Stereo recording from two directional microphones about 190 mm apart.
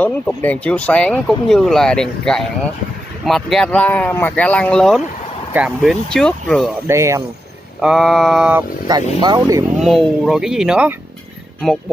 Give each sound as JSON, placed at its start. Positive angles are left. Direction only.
{"t": 0.0, "sound": "speech", "side_deg": 10}
{"t": 6.9, "sound": "speech", "side_deg": -15}
{"t": 7.8, "sound": "speech", "side_deg": 0}
{"t": 8.9, "sound": "speech", "side_deg": -20}
{"t": 9.8, "sound": "speech", "side_deg": 0}